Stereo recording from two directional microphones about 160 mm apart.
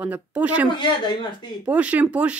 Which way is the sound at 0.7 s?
30° left (ahead or behind).